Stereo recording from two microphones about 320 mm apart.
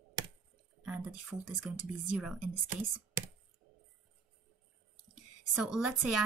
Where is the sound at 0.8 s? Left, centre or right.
Centre.